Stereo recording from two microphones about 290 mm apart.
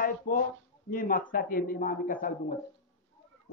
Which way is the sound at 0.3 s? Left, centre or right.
Left.